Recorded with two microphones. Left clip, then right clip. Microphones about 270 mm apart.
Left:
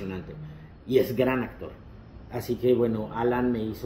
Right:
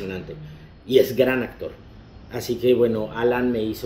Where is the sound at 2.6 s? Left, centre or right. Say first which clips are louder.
Right 5 dB; centre.